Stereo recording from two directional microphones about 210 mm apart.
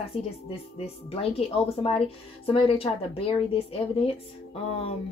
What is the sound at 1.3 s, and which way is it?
Speech, 25° left (ahead or behind).